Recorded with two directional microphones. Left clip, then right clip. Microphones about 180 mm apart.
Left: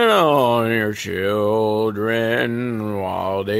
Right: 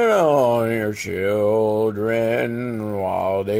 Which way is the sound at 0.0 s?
20° left (ahead or behind).